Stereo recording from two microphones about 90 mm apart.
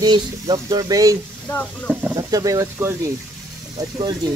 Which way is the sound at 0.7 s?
45° right (ahead or behind).